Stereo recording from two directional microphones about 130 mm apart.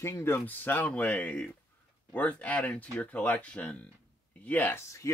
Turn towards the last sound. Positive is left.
turn(degrees=20)  # may be behind; listen again after turning